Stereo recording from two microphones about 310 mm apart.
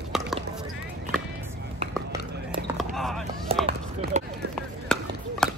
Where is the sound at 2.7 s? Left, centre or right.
Centre.